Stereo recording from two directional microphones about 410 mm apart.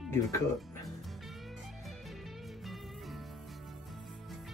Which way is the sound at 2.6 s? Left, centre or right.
Centre.